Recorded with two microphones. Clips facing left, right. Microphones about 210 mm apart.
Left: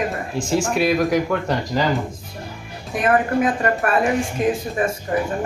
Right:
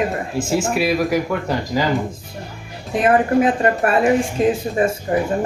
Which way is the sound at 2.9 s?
25° right (ahead or behind).